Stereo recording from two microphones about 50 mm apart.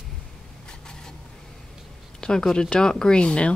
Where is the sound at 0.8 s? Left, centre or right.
Centre.